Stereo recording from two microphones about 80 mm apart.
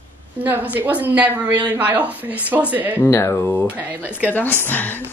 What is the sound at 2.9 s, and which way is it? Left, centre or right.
Speech, left.